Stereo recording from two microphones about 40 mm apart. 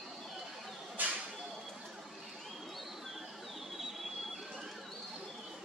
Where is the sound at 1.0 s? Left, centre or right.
Right.